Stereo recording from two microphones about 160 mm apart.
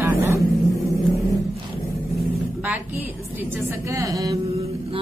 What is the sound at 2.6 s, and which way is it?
A woman's voice, 10° right (ahead or behind).